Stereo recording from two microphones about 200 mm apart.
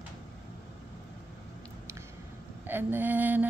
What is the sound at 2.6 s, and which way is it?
Speech, 10° right (ahead or behind).